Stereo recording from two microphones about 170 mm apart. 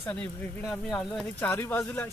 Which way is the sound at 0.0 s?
5° left (ahead or behind).